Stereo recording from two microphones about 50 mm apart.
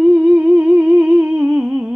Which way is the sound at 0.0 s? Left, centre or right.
Right.